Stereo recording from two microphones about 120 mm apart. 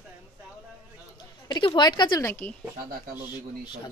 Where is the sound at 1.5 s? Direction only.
40° left (ahead or behind).